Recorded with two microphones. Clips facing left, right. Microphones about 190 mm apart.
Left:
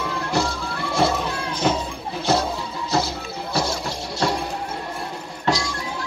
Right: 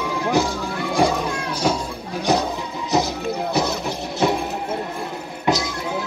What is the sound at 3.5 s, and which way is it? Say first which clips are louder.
Music: left 1 dB; 20° right (ahead or behind).